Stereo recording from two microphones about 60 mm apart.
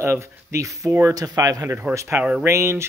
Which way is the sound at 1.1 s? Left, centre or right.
Right.